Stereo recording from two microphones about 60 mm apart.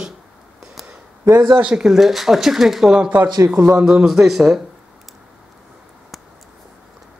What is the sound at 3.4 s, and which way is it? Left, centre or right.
Speech, right.